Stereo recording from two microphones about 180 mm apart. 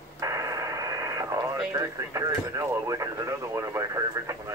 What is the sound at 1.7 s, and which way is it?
Speech, 20° right (ahead or behind).